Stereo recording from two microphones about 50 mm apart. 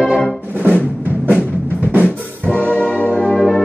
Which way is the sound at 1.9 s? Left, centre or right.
Right.